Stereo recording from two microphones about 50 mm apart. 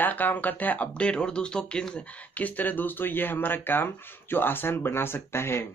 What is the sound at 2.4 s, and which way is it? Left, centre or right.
Speech, left.